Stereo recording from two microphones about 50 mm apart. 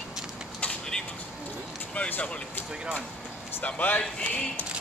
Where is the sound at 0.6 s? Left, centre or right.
Left.